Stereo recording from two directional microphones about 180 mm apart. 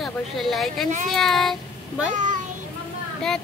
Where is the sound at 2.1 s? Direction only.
45° right (ahead or behind).